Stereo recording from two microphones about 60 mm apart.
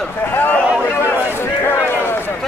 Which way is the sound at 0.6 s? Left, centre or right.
Centre.